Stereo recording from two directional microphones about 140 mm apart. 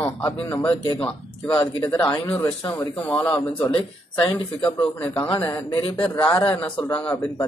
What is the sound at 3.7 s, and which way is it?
Speech, 25° left (ahead or behind).